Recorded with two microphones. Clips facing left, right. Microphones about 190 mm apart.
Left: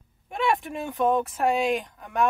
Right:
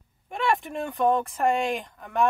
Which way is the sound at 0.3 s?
Centre (ahead or behind).